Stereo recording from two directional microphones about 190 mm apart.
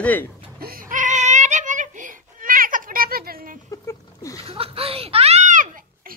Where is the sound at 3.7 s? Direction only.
15° left (ahead or behind).